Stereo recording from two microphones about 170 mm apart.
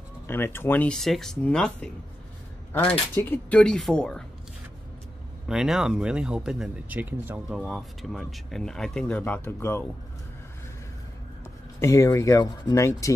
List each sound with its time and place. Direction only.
0.3 s speech: 15° left (ahead or behind)
5.5 s speech: 5° right (ahead or behind); by 9.8 s 15° left (ahead or behind)
11.8 s speech: 15° left (ahead or behind)